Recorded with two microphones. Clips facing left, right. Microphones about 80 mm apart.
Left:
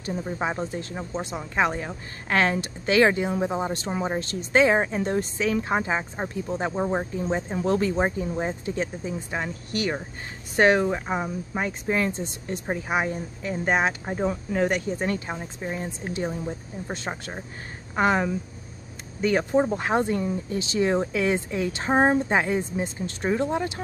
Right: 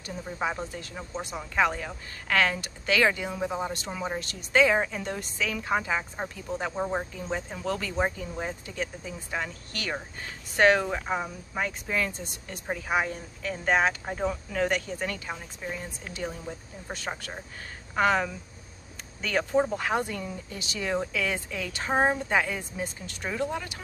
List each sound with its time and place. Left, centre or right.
0.2 s speech: left
6.7 s speech: centre
7.2 s speech: left